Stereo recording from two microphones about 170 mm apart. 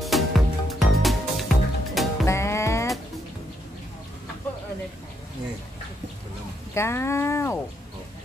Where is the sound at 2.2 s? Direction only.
15° left (ahead or behind).